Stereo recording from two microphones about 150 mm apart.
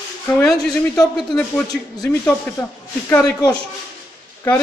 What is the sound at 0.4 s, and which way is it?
Speech, 5° left (ahead or behind).